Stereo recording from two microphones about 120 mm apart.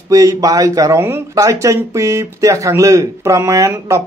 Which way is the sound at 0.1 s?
30° right (ahead or behind).